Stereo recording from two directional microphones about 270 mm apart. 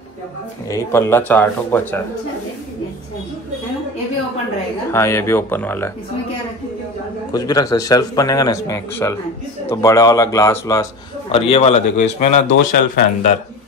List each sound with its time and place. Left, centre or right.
0.7 s speech: centre
4.9 s speech: centre
7.3 s speech: centre
11.3 s speech: left
12.4 s speech: left